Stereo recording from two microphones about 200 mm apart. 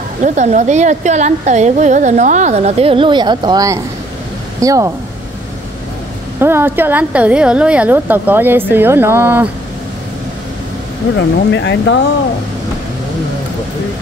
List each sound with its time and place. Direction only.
0.2 s a woman's voice: 35° right (ahead or behind); by 4.9 s 15° right (ahead or behind)
6.4 s a woman's voice: 10° right (ahead or behind)
11.1 s speech: 60° left (ahead or behind)